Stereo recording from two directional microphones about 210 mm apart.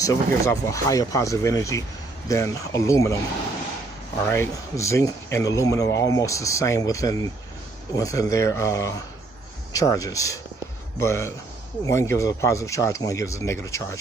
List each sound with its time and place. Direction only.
0.0 s speech: 15° left (ahead or behind)
4.3 s speech: 15° left (ahead or behind)